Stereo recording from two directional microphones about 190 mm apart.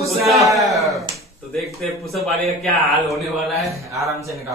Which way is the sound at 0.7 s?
Centre (ahead or behind).